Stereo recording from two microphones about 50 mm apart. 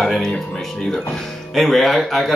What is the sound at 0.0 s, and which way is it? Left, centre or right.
Speech, centre.